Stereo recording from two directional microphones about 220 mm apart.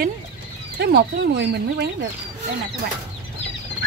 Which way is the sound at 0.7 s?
50° right (ahead or behind).